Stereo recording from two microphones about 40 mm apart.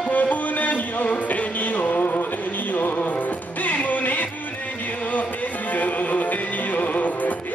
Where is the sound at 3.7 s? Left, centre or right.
Left.